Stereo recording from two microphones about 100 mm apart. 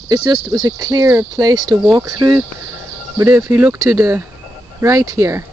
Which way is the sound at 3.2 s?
25° right (ahead or behind).